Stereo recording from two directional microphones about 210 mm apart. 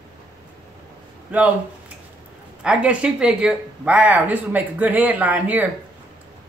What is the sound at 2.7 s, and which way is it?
Speech, 5° right (ahead or behind).